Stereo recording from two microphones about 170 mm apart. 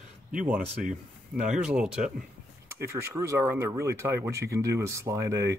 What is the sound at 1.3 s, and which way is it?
Speech, 5° right (ahead or behind).